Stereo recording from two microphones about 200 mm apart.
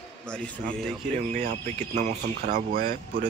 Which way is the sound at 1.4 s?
40° right (ahead or behind).